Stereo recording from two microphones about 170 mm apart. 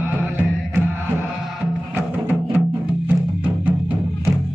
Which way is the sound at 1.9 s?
10° right (ahead or behind).